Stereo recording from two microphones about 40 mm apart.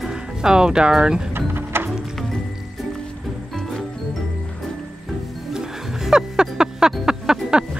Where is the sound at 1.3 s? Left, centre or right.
Right.